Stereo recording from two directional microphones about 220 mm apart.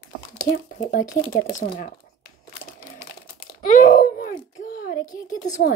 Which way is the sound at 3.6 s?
35° left (ahead or behind).